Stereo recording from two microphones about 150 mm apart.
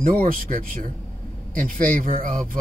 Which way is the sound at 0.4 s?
70° right (ahead or behind).